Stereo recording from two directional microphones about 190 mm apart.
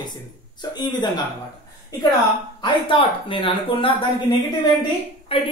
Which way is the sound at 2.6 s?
25° left (ahead or behind).